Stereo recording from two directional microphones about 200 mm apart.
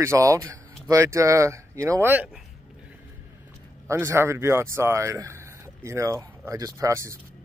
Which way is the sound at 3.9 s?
15° right (ahead or behind).